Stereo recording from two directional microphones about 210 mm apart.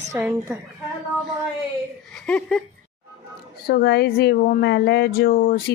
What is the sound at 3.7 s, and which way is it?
Speech, 50° left (ahead or behind).